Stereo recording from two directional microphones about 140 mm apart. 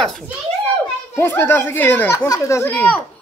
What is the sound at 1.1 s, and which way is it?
Speech, 15° left (ahead or behind).